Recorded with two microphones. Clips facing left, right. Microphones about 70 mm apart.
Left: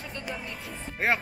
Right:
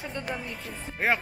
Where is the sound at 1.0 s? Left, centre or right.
Centre.